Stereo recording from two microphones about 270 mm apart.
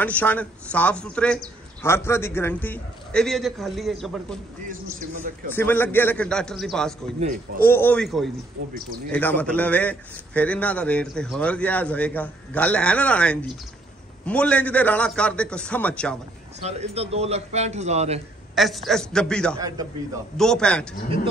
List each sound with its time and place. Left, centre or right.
0.0 s a man's voice: centre
5.5 s a man's voice: centre
7.2 s speech: right
7.6 s a man's voice: centre
16.5 s a man's voice: right
18.5 s a man's voice: centre
19.5 s a man's voice: centre
20.3 s a man's voice: centre